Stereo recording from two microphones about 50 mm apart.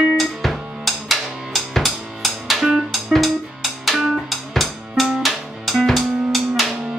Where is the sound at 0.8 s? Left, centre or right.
Centre.